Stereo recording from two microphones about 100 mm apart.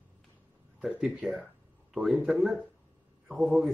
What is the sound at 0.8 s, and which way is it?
Speech, 5° right (ahead or behind).